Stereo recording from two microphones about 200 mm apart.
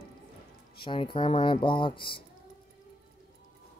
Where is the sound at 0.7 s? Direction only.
25° left (ahead or behind).